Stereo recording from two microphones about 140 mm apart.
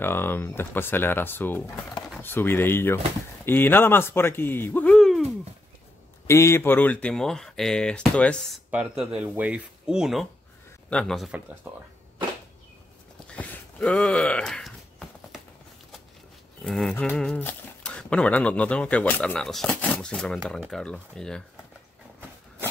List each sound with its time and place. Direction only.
0.0 s speech: 15° left (ahead or behind)
6.2 s speech: 20° left (ahead or behind)
8.6 s speech: 5° right (ahead or behind)
11.6 s speech: 15° right (ahead or behind)
13.3 s a sound: 10° left (ahead or behind)
16.6 s speech: centre (ahead or behind)